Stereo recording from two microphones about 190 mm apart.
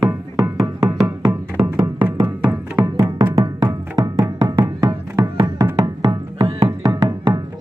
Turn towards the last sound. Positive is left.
turn(degrees=-20)  # may be behind; listen again after turning